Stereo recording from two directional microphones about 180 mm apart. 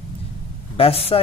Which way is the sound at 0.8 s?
35° left (ahead or behind).